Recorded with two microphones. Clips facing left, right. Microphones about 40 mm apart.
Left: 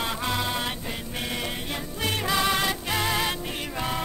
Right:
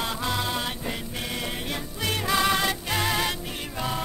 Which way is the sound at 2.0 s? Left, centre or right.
Left.